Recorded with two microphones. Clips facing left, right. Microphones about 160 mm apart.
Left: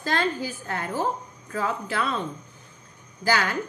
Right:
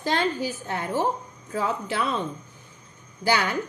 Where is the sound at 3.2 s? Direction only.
20° right (ahead or behind).